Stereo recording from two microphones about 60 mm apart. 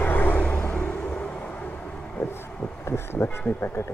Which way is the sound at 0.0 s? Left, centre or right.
Left.